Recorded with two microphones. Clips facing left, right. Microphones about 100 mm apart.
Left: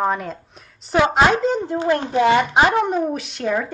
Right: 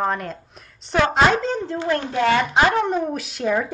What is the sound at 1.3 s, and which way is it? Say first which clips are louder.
Speech: left 3 dB; 15° left (ahead or behind).